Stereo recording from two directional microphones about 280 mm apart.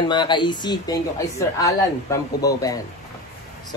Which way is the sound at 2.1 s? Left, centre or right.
Centre.